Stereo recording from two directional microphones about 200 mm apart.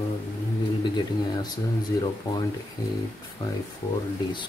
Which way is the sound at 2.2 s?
15° left (ahead or behind).